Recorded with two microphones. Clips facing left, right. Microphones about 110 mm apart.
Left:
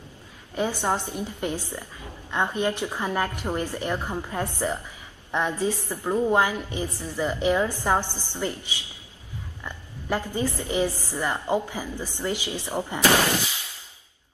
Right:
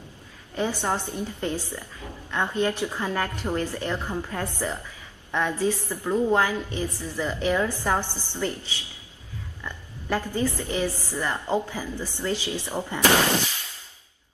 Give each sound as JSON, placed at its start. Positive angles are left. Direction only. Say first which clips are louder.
{"t": 0.6, "sound": "a woman's voice", "louder": "left 1 dB", "side_deg": 15}